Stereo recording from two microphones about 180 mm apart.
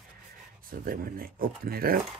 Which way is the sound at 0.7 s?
55° right (ahead or behind).